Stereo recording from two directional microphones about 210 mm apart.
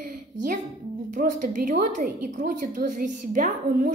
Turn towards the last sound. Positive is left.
turn(degrees=-35)  # may be behind; listen again after turning